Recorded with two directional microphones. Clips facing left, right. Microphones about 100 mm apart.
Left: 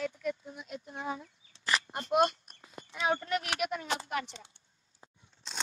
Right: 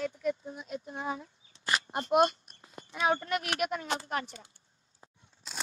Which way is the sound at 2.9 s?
50° right (ahead or behind).